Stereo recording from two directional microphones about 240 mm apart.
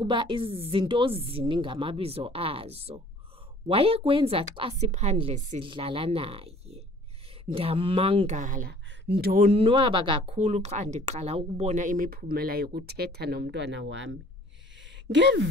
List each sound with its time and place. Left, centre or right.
0.0 s speech: centre; by 9.5 s right
9.5 s speech: right